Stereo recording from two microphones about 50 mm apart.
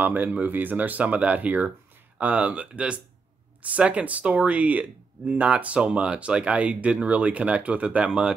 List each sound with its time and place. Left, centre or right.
0.0 s speech: right; by 8.4 s centre